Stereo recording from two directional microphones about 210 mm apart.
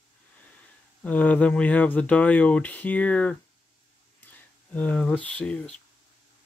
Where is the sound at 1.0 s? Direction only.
5° left (ahead or behind).